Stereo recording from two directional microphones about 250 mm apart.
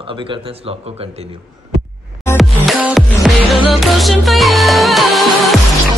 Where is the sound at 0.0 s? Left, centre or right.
Right.